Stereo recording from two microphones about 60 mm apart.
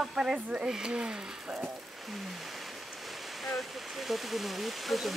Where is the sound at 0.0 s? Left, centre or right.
Centre.